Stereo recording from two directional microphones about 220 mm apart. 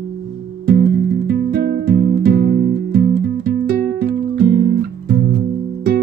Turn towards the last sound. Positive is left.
turn(degrees=-50)  # may be behind; listen again after turning